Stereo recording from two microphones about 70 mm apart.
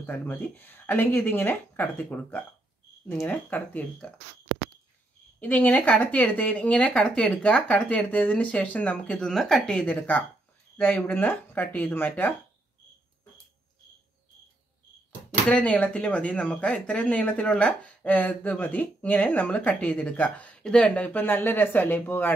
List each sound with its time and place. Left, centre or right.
0.0 s speech: left
5.4 s speech: left; by 9.8 s centre
10.8 s speech: left
15.5 s speech: centre